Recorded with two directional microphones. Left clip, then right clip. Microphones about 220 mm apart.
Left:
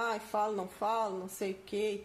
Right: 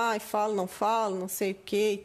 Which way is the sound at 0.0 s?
50° right (ahead or behind).